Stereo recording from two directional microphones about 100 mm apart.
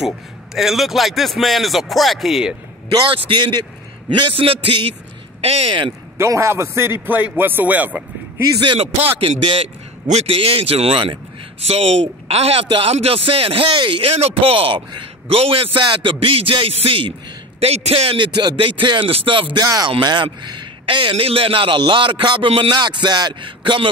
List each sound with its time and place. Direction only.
0.6 s speech: centre (ahead or behind)
2.9 s a man's voice: 50° right (ahead or behind)
4.2 s speech: 65° right (ahead or behind)
5.4 s speech: 85° right
6.1 s a man's voice: 30° right (ahead or behind)
8.5 s speech: 75° right (ahead or behind)
11.6 s speech: 90° right
12.6 s speech: 70° right (ahead or behind)
17.6 s speech: 90° right; by 19.6 s 60° right (ahead or behind)
19.6 s speech: 40° right (ahead or behind)
19.9 s a man's voice: 50° right (ahead or behind)